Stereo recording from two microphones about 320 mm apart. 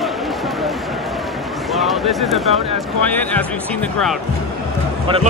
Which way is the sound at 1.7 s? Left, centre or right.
Centre.